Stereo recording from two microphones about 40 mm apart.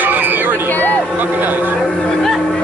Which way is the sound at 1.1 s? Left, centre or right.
Right.